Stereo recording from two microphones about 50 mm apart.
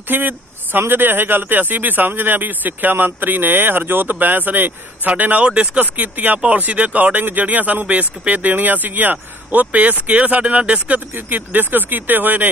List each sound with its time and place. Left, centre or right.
0.1 s a man's voice: right
11.1 s a man's voice: right